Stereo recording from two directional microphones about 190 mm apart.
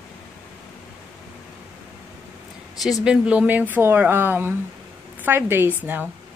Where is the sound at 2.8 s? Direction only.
Centre (ahead or behind).